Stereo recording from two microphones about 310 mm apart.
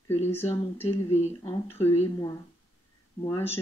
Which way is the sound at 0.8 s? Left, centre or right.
Centre.